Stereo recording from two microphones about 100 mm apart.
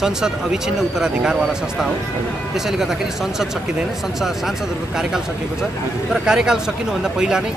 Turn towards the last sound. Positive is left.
turn(degrees=-5)  # may be behind; listen again after turning